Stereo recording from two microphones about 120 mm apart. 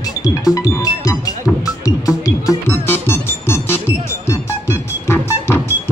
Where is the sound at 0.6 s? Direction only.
30° left (ahead or behind).